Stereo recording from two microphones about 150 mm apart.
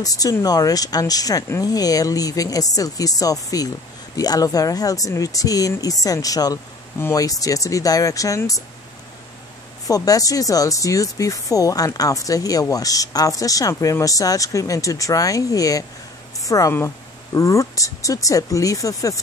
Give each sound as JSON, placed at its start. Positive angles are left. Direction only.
{"t": 0.0, "sound": "speech", "side_deg": 25}
{"t": 9.8, "sound": "speech", "side_deg": 25}